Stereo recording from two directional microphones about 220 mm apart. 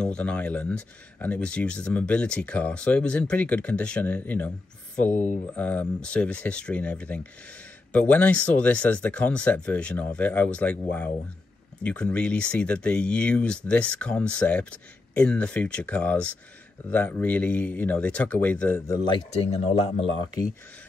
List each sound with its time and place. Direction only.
0.0 s speech: 5° left (ahead or behind)
19.0 s speech: 25° left (ahead or behind)